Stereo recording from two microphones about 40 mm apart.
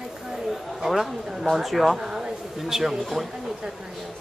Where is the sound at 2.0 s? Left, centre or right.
Centre.